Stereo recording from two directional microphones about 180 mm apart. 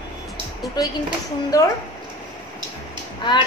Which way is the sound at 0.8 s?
25° left (ahead or behind).